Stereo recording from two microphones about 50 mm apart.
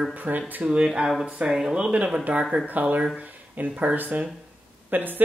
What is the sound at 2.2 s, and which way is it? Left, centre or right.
Speech, right.